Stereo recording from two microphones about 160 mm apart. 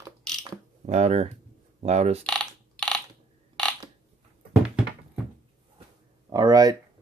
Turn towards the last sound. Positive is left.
turn(degrees=-25)  # may be behind; listen again after turning